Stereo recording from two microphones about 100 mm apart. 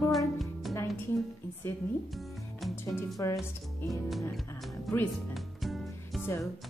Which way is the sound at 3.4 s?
Centre (ahead or behind).